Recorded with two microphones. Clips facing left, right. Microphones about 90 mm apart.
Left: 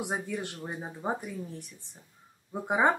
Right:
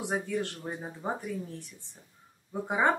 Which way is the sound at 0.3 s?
10° left (ahead or behind).